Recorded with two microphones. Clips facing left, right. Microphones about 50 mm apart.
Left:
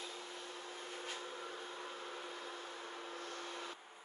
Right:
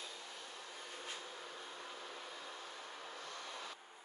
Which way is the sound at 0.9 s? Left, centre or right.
Centre.